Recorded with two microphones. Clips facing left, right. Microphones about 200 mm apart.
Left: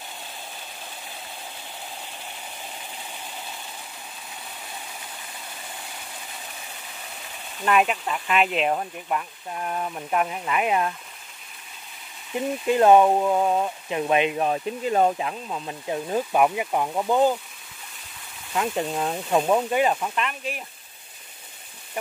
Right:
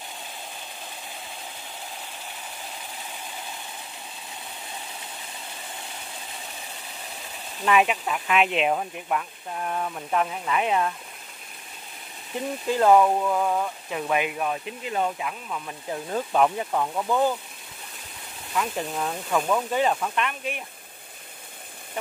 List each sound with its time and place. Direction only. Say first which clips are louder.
7.6 s speech: even; centre (ahead or behind)
12.6 s speech: left 2 dB; 20° left (ahead or behind)
14.5 s speech: left 6 dB; 40° left (ahead or behind)
15.1 s speech: left 3 dB; 30° left (ahead or behind)
18.5 s speech: left 3 dB; 25° left (ahead or behind)
19.7 s speech: left 1 dB; 10° left (ahead or behind)